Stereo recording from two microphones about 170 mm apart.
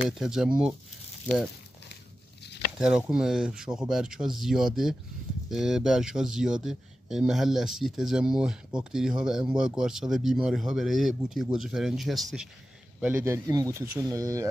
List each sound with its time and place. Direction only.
0.0 s speech: 5° right (ahead or behind)
2.8 s speech: 5° right (ahead or behind)
13.0 s speech: 15° right (ahead or behind)